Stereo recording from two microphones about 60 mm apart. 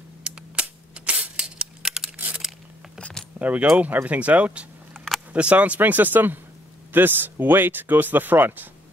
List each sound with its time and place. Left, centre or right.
0.2 s a sound: centre
3.0 s keys jangling: centre
3.3 s speech: right